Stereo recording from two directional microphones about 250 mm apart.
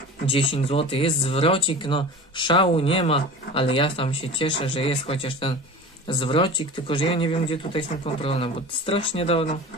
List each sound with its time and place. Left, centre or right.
0.3 s speech: left